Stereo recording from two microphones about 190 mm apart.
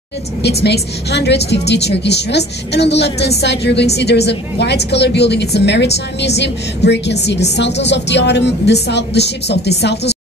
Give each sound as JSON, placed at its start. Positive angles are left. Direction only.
{"t": 0.4, "sound": "a woman's voice", "side_deg": 60}